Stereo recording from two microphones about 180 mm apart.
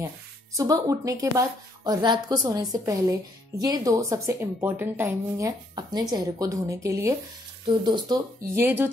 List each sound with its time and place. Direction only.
0.6 s speech: 20° right (ahead or behind)
8.6 s speech: 10° right (ahead or behind)